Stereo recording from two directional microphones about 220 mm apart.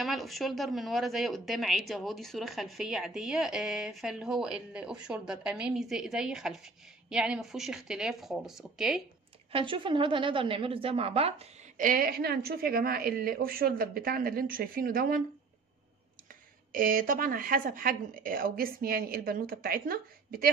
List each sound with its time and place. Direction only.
0.0 s a woman's voice: centre (ahead or behind)
9.5 s a woman's voice: 25° right (ahead or behind); by 15.2 s 40° right (ahead or behind)
16.7 s a woman's voice: 40° right (ahead or behind)